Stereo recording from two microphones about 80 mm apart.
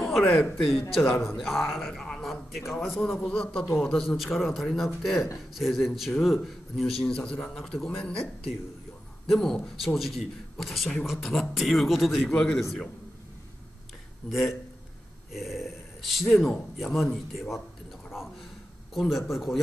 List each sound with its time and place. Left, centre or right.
0.4 s a man's voice: centre
9.3 s a man's voice: centre
12.2 s a man's voice: centre
14.3 s a man's voice: centre
18.9 s a man's voice: centre